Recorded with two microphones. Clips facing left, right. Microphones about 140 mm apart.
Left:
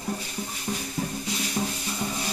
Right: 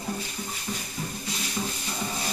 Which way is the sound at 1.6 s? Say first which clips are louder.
Left 3 dB; 30° left (ahead or behind).